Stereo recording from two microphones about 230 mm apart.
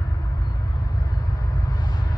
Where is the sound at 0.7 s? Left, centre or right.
Centre.